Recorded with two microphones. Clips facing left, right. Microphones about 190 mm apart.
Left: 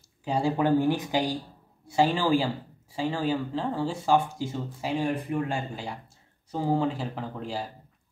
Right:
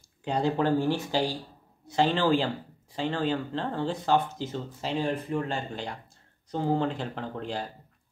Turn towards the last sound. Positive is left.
turn(degrees=5)  # may be behind; listen again after turning